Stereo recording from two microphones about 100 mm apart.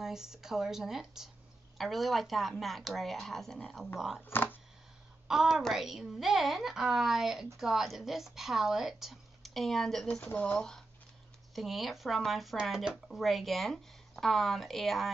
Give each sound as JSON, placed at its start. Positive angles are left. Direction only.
{"t": 0.0, "sound": "speech", "side_deg": -5}
{"t": 4.2, "sound": "speech", "side_deg": 20}
{"t": 5.3, "sound": "speech", "side_deg": -5}
{"t": 10.3, "sound": "speech", "side_deg": 15}